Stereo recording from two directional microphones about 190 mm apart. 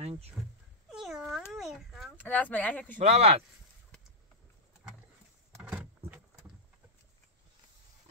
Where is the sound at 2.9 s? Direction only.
35° right (ahead or behind).